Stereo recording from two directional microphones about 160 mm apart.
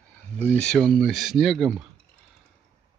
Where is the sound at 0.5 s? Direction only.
5° left (ahead or behind).